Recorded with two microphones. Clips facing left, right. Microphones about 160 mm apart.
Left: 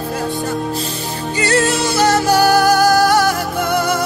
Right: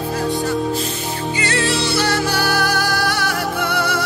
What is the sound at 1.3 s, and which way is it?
Music, 45° left (ahead or behind).